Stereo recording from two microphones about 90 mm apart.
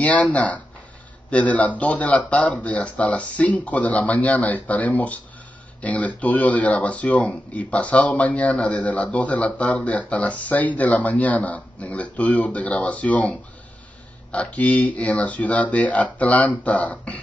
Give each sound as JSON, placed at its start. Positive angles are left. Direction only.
{"t": 0.0, "sound": "speech", "side_deg": 15}